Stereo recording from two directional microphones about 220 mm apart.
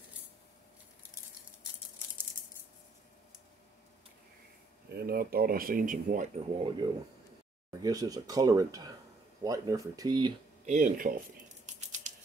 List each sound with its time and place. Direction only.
4.9 s speech: 45° right (ahead or behind)
6.8 s speech: 15° right (ahead or behind)
10.6 s typewriter: 35° right (ahead or behind)